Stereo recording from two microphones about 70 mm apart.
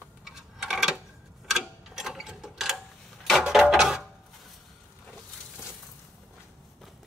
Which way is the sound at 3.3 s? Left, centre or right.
Centre.